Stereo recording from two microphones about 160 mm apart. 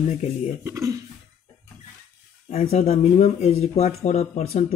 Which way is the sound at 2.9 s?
45° left (ahead or behind).